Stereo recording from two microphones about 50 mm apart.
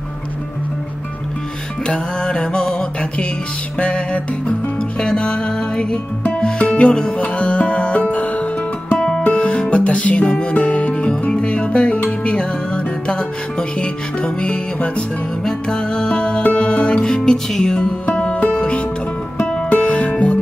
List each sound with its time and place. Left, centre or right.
1.9 s music: centre
6.6 s speech: left
7.2 s music: left
18.1 s music: left